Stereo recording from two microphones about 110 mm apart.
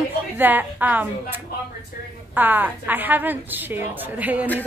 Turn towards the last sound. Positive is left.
turn(degrees=-15)  # may be behind; listen again after turning